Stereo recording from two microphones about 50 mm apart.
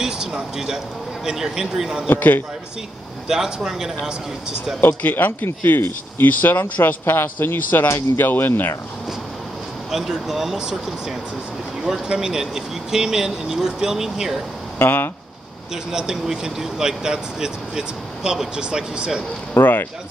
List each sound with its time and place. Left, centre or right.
0.0 s a sound: centre
1.2 s speech: centre
2.0 s speech: left
3.3 s speech: centre
4.7 s speech: left
9.8 s speech: centre
14.8 s speech: left
15.7 s speech: centre
19.5 s speech: left